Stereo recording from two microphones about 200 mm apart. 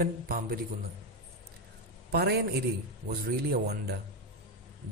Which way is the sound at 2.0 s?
55° right (ahead or behind).